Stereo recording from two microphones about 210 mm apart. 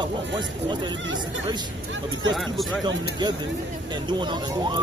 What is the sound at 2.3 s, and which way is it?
Speech, centre (ahead or behind).